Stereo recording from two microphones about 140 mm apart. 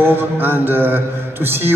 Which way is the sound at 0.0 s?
15° right (ahead or behind).